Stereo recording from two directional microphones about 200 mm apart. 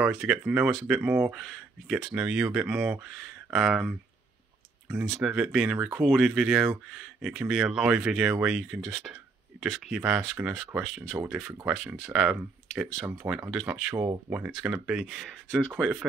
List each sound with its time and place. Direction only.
0.0 s speech: centre (ahead or behind)
5.1 s speech: 5° right (ahead or behind)
13.5 s speech: centre (ahead or behind)